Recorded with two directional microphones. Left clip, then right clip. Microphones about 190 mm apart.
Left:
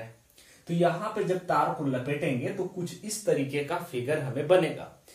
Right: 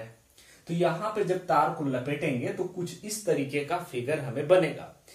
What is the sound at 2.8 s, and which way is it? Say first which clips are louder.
Speech: right 1 dB; 15° left (ahead or behind).